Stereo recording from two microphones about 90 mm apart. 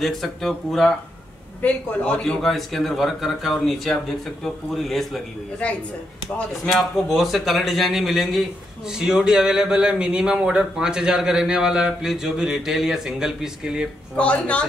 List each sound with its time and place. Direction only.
0.0 s speech: 5° left (ahead or behind)
1.6 s a man's voice: 20° left (ahead or behind)
2.4 s speech: centre (ahead or behind)
6.3 s a man's voice: 5° left (ahead or behind)
14.1 s a man's voice: 15° left (ahead or behind)